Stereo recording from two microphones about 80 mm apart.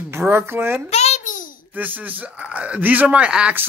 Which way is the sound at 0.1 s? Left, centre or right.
Right.